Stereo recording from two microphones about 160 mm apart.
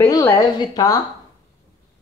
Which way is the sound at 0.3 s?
25° left (ahead or behind).